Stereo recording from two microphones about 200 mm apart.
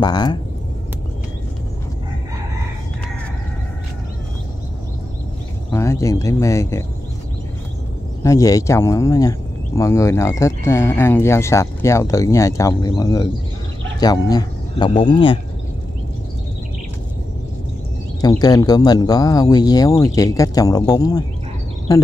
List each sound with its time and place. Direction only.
0.0 s speech: 20° left (ahead or behind)
5.7 s speech: 15° left (ahead or behind)
8.2 s speech: 15° left (ahead or behind)
18.2 s speech: 20° left (ahead or behind)